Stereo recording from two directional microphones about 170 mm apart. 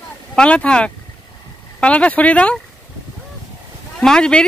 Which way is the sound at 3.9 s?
5° left (ahead or behind).